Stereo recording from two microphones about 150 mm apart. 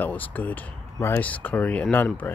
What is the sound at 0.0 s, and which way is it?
Speech, 10° left (ahead or behind).